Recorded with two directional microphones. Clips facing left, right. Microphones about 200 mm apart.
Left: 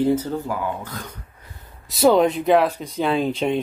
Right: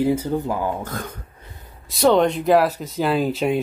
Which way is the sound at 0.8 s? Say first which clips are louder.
Right 4 dB; 50° right (ahead or behind).